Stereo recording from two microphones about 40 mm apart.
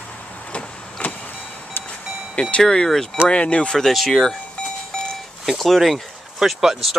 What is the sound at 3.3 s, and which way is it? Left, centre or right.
Speech, left.